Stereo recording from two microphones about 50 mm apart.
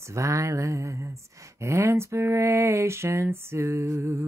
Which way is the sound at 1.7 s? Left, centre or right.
Right.